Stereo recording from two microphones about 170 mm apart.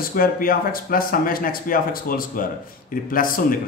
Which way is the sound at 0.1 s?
55° left (ahead or behind).